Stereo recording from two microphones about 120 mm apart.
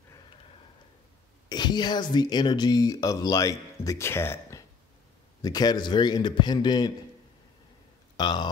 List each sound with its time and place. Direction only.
1.5 s a man's voice: 35° left (ahead or behind)
8.2 s a man's voice: 35° left (ahead or behind)